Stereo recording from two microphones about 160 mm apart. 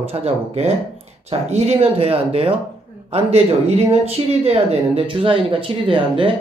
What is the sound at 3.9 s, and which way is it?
Speech, 40° right (ahead or behind).